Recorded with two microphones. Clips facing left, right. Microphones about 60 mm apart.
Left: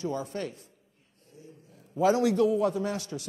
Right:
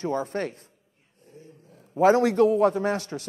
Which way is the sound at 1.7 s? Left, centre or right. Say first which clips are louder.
Right 5 dB; right.